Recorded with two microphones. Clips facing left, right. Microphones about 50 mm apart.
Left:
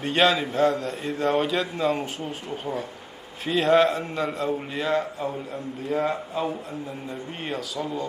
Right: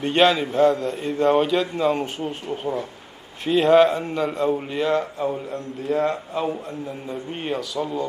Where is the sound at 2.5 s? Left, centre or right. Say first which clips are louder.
Right 3 dB; centre.